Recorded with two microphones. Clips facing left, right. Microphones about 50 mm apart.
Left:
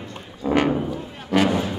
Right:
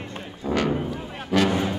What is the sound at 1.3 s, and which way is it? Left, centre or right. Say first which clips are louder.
Music: left 2 dB; centre.